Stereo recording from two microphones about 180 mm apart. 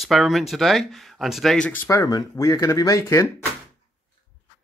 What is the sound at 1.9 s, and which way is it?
Speech, 20° left (ahead or behind).